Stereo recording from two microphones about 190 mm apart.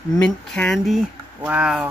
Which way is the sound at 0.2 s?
5° left (ahead or behind).